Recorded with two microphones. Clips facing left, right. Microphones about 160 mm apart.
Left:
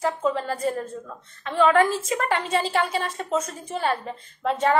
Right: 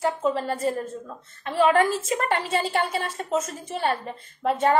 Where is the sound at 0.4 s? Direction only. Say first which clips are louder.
Even; centre (ahead or behind).